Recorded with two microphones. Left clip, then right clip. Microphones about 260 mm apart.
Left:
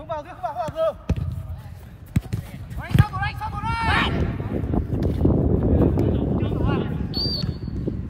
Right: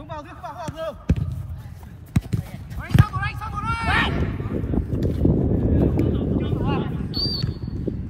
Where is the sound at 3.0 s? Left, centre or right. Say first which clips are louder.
Left 1 dB; left.